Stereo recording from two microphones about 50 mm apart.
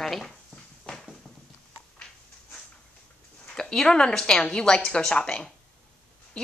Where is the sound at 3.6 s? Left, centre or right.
Centre.